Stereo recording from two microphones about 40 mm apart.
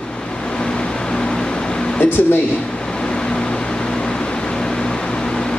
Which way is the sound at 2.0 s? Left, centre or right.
Left.